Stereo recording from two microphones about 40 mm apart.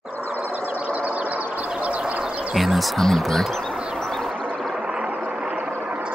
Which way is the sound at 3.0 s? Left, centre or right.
Centre.